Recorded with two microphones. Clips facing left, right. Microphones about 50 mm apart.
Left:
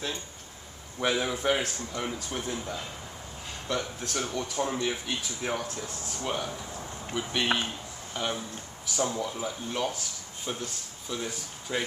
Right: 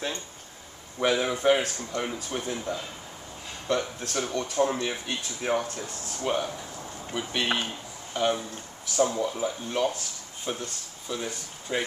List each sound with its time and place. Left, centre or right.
0.9 s speech: centre